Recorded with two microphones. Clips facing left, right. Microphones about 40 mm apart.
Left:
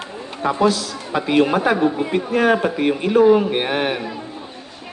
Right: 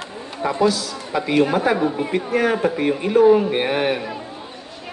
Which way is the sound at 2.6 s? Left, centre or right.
Left.